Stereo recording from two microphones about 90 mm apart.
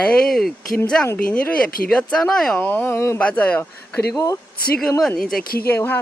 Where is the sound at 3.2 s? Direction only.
15° left (ahead or behind).